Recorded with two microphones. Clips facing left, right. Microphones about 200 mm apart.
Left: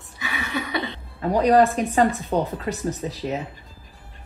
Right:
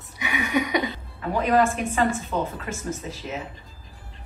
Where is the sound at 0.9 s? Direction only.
35° left (ahead or behind).